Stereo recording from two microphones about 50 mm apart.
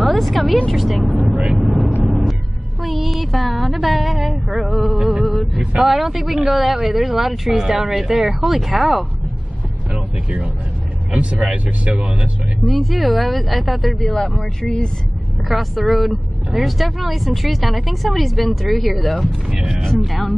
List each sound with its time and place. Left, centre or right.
0.0 s a woman's voice: centre
1.6 s vehicle: centre
2.0 s music: centre
2.8 s speech: centre
4.9 s music: centre
5.9 s speech: centre
9.9 s vehicle: right
11.1 s speech: right
12.6 s speech: centre
15.4 s speech: centre
19.4 s speech: centre
19.8 s speech: centre